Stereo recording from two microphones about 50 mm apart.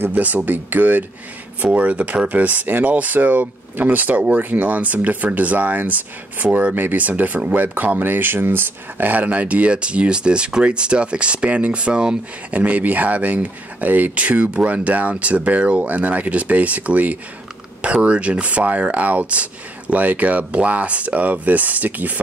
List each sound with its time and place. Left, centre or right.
0.1 s speech: right
12.4 s speech: right